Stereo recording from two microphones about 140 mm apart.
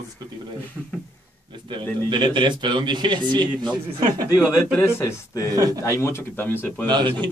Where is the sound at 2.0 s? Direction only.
35° right (ahead or behind).